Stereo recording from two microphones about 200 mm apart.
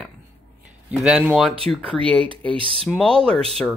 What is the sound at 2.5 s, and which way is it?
Speech, 25° right (ahead or behind).